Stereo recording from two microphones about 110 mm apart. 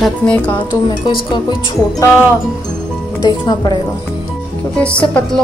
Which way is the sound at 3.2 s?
35° left (ahead or behind).